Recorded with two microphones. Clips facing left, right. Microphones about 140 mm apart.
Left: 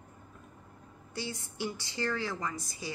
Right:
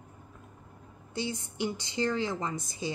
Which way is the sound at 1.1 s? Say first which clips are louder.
Right 4 dB; 20° right (ahead or behind).